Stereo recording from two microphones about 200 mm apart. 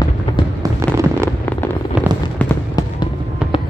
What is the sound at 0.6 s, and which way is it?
Fireworks, 15° right (ahead or behind).